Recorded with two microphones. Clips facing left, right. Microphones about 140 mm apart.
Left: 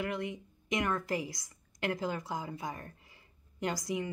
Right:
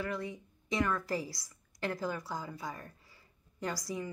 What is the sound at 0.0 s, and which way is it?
A woman's voice, 20° left (ahead or behind).